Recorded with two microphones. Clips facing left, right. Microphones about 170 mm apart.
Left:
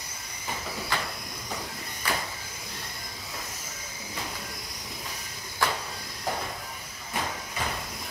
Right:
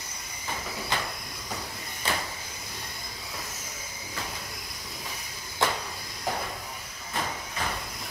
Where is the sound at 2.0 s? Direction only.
25° right (ahead or behind).